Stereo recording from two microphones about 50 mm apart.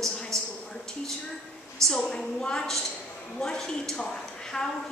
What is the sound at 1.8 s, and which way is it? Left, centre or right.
Speech, right.